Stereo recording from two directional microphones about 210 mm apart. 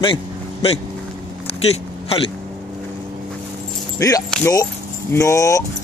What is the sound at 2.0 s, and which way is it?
Speech, 25° left (ahead or behind).